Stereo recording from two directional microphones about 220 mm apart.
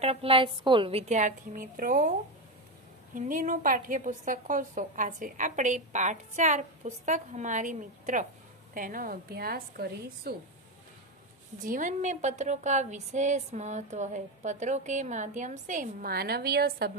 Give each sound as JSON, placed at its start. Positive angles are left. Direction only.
{"t": 0.0, "sound": "a woman's voice", "side_deg": -25}
{"t": 3.2, "sound": "a woman's voice", "side_deg": -35}
{"t": 11.6, "sound": "a woman's voice", "side_deg": -35}